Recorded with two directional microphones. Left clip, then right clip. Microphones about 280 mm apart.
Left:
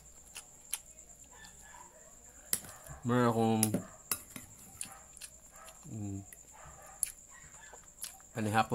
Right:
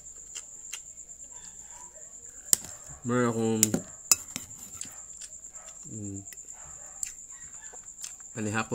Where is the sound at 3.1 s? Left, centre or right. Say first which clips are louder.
Right 2 dB; centre.